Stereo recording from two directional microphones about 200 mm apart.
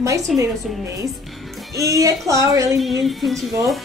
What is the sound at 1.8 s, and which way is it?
A woman's voice, 15° right (ahead or behind).